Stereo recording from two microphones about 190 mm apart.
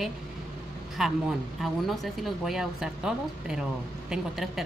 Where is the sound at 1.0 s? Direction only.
5° right (ahead or behind).